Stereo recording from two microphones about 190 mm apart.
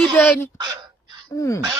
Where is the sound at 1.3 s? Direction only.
15° left (ahead or behind).